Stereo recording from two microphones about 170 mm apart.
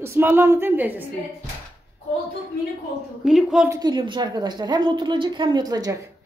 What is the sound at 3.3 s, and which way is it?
Speech, 5° right (ahead or behind).